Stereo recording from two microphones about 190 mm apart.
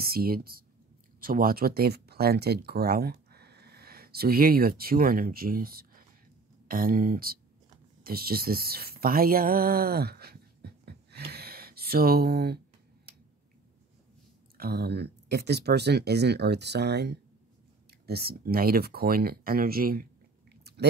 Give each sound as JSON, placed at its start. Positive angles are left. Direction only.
{"t": 0.0, "sound": "speech", "side_deg": -50}
{"t": 14.6, "sound": "speech", "side_deg": -55}
{"t": 20.7, "sound": "chewing", "side_deg": -60}